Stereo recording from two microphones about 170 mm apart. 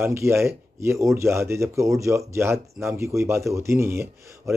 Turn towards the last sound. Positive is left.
turn(degrees=-15)  # may be behind; listen again after turning